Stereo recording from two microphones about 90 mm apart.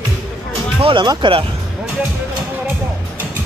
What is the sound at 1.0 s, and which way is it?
Speech, 65° right (ahead or behind).